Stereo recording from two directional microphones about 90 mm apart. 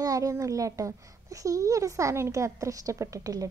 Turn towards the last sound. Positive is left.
turn(degrees=-40)  # may be behind; listen again after turning